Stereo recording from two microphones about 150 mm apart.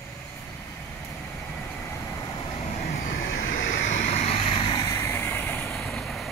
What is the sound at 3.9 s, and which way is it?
Vehicle, 45° left (ahead or behind).